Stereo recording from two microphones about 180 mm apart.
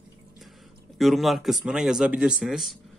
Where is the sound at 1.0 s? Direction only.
Centre (ahead or behind).